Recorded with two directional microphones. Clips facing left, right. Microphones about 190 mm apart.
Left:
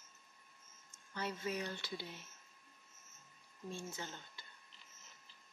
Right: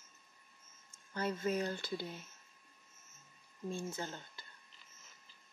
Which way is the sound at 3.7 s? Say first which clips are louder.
Right 5 dB; 45° right (ahead or behind).